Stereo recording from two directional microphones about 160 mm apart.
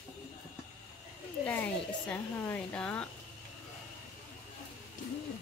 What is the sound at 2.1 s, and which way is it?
Speech, 10° left (ahead or behind).